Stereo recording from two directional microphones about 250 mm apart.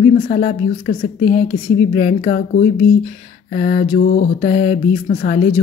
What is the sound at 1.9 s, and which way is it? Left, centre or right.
Mantra, left.